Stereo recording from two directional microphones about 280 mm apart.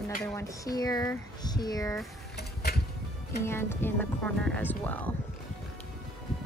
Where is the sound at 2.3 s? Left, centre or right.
Left.